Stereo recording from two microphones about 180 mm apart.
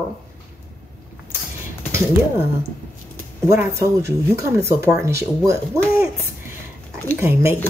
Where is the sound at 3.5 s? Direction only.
15° right (ahead or behind).